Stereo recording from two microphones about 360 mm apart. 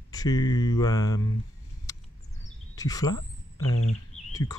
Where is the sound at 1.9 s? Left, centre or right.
Centre.